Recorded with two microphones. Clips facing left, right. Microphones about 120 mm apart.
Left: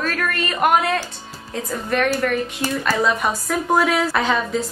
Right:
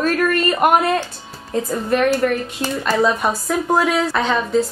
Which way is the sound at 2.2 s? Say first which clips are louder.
Right 3 dB; 25° right (ahead or behind).